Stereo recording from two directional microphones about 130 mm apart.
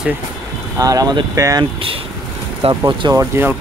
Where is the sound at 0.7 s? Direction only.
25° right (ahead or behind).